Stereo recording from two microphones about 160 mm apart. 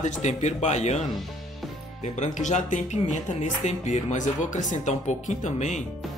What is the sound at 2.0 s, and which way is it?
Speech, 45° left (ahead or behind).